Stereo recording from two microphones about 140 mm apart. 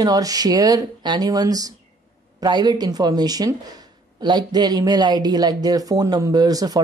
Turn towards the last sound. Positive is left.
turn(degrees=-25)  # may be behind; listen again after turning